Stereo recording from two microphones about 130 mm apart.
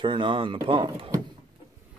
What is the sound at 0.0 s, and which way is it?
Speech, 40° right (ahead or behind).